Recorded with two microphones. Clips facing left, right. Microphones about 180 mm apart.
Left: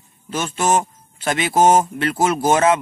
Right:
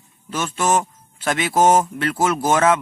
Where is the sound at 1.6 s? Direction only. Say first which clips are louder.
Left 1 dB; 5° left (ahead or behind).